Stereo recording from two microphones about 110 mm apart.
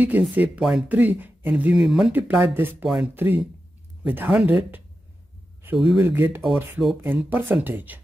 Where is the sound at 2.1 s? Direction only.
20° right (ahead or behind).